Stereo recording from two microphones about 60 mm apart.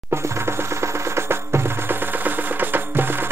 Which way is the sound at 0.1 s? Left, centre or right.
Right.